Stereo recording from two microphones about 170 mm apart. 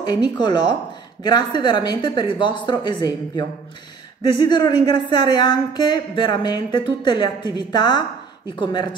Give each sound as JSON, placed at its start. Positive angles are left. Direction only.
{"t": 0.0, "sound": "speech", "side_deg": 25}